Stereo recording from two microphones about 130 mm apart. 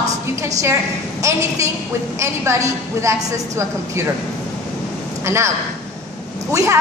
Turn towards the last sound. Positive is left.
turn(degrees=-20)  # may be behind; listen again after turning